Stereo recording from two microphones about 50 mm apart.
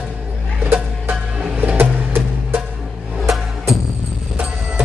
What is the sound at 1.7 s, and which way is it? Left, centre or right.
Music, right.